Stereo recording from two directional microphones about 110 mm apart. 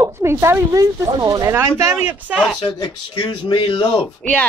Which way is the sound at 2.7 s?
45° left (ahead or behind).